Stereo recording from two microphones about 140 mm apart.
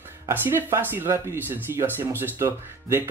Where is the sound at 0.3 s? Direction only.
15° right (ahead or behind).